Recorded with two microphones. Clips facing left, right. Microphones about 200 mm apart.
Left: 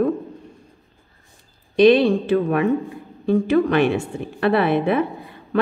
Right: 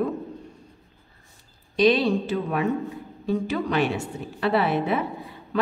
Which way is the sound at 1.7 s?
55° left (ahead or behind).